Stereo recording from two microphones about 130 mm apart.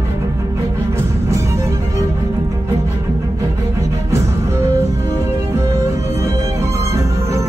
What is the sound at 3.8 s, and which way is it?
Music, 25° right (ahead or behind).